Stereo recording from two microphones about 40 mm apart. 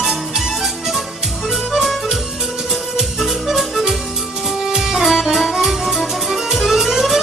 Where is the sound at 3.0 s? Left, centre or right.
Centre.